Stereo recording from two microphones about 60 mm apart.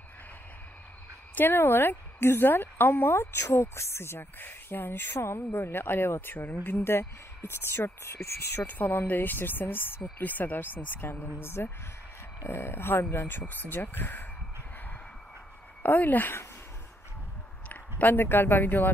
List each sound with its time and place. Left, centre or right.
1.3 s a woman's voice: left
15.8 s speech: left
17.6 s a man's voice: left